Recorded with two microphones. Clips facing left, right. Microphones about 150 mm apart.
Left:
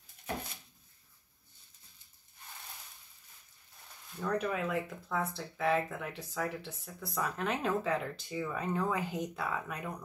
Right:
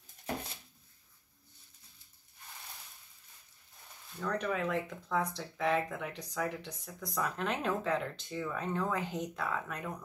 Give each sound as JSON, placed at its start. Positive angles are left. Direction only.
{"t": 4.2, "sound": "speech", "side_deg": 5}